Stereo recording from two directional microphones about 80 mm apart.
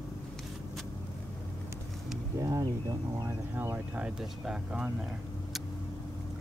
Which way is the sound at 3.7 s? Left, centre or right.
Right.